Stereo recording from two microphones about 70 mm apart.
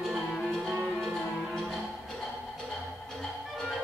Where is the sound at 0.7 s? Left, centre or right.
Centre.